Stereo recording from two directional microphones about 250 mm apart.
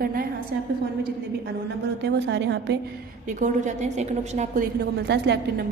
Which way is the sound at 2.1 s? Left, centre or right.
Right.